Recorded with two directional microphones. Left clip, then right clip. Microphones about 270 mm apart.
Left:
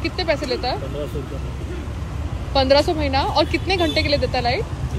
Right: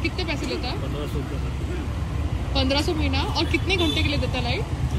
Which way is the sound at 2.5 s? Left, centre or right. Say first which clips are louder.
Left 8 dB; centre.